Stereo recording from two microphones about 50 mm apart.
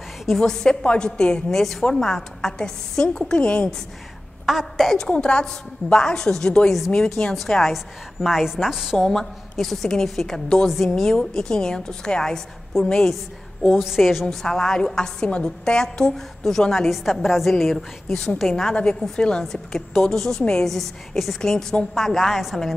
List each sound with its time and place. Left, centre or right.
0.4 s a woman's voice: centre
4.5 s a woman's voice: centre
4.9 s a woman's voice: centre
8.3 s a woman's voice: centre
9.0 s a woman's voice: centre
10.8 s a woman's voice: left
13.7 s a woman's voice: centre
14.3 s a woman's voice: centre
16.7 s a woman's voice: centre
19.1 s a woman's voice: centre
19.4 s a woman's voice: centre